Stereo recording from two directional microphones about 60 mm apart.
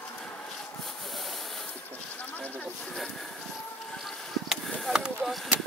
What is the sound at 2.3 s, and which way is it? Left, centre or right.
Snake, left.